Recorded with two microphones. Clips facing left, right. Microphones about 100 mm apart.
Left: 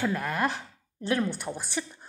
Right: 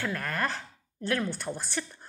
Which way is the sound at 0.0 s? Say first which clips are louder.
Left 4 dB; 15° left (ahead or behind).